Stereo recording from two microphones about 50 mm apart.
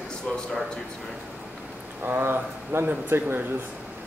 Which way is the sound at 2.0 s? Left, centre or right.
Right.